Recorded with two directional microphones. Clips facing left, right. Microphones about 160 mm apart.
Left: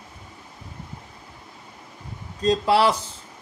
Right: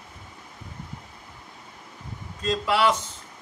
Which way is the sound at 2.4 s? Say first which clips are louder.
Left 4 dB; 35° left (ahead or behind).